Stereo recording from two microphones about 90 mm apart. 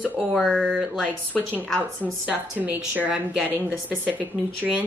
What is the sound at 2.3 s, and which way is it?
Speech, 15° right (ahead or behind).